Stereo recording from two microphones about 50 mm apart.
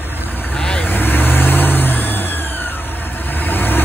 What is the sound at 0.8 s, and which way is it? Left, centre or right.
Vehicle, left.